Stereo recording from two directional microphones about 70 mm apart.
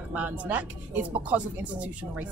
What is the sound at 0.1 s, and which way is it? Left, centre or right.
Speech, right.